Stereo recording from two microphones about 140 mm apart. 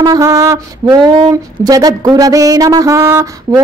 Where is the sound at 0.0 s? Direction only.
25° right (ahead or behind).